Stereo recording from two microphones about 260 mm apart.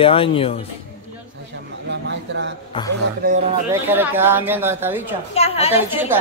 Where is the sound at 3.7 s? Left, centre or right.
Centre.